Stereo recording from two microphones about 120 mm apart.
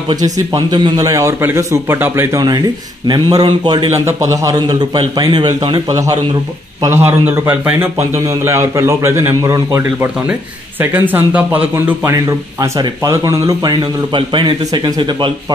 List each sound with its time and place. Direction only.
0.1 s a man's voice: 35° right (ahead or behind); by 2.2 s 20° right (ahead or behind)
2.3 s a man's voice: 30° right (ahead or behind)
3.9 s a man's voice: 25° right (ahead or behind)
6.8 s speech: 20° right (ahead or behind)
9.8 s speech: 15° right (ahead or behind)
12.0 s speech: 25° right (ahead or behind)
14.1 s speech: 40° right (ahead or behind)